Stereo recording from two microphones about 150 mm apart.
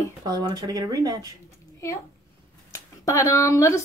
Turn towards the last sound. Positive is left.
turn(degrees=20)  # may be behind; listen again after turning